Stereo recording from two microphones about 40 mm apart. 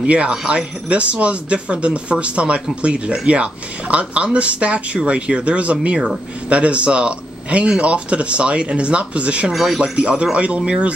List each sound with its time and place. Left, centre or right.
0.0 s speech: right
9.5 s speech: centre
9.8 s speech: right